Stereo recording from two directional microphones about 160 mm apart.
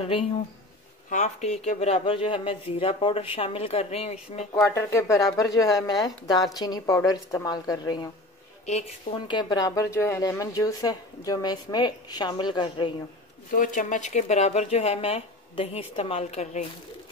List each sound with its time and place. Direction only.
1.1 s speech: 45° left (ahead or behind)
4.6 s speech: 15° left (ahead or behind)
8.6 s speech: 40° left (ahead or behind)
9.3 s speech: 25° left (ahead or behind)
13.5 s speech: 55° left (ahead or behind)